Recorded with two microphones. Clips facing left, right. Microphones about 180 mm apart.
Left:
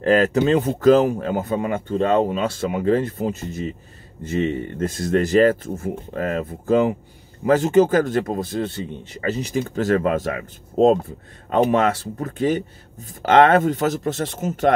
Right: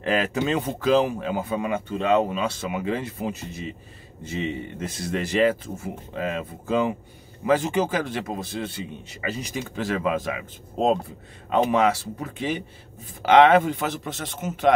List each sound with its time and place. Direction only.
0.0 s speech: 40° left (ahead or behind)